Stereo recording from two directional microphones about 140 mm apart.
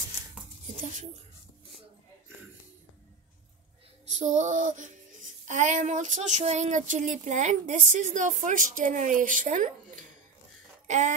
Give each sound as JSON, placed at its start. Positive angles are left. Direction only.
{"t": 4.1, "sound": "speech", "side_deg": -60}
{"t": 10.9, "sound": "speech", "side_deg": -60}